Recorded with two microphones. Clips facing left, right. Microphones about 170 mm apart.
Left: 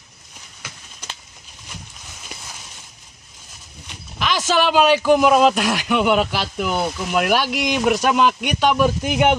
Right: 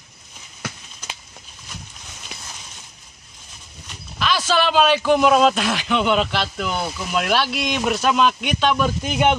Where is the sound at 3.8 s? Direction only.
15° left (ahead or behind).